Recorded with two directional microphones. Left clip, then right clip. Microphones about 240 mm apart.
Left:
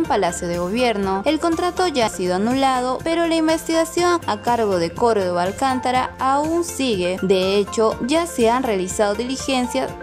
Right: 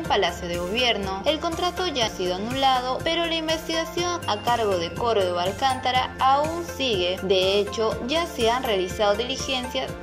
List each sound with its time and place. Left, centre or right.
0.7 s speech: centre